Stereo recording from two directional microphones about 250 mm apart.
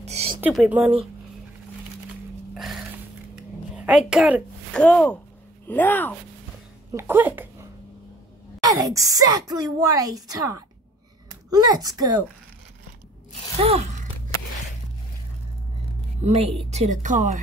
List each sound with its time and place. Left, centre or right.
0.0 s a sound: right
0.4 s a woman's voice: centre
2.5 s a sound: centre
3.7 s speech: centre
6.9 s speech: centre
8.6 s a woman's voice: centre
13.6 s speech: right
16.2 s speech: right